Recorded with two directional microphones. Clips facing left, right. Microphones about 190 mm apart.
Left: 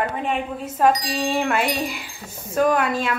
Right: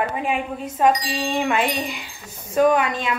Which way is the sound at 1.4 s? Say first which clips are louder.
Even; 5° left (ahead or behind).